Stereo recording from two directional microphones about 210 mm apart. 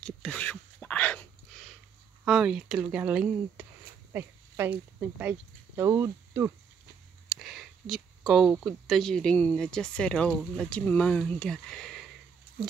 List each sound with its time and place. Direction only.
0.0 s a sound: 5° left (ahead or behind)
2.2 s speech: 5° right (ahead or behind)
4.1 s zipper: 10° right (ahead or behind)
5.8 s speech: 10° right (ahead or behind)